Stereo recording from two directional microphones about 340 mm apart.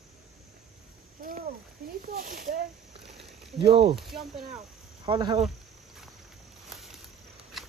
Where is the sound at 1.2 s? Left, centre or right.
Right.